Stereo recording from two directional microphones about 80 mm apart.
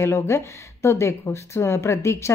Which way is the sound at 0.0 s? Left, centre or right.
Left.